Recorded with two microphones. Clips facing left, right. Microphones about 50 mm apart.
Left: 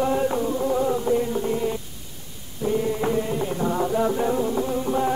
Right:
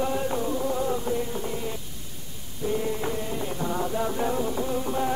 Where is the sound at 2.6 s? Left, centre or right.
Centre.